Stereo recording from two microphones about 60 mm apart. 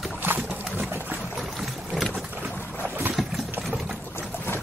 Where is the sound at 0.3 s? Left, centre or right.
Right.